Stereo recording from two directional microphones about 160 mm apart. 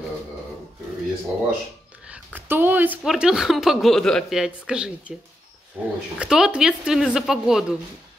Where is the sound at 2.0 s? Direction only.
10° right (ahead or behind).